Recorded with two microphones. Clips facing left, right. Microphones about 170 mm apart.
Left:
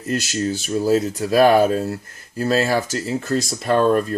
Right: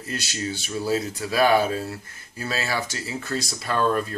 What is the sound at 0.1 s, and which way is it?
Speech, 45° left (ahead or behind).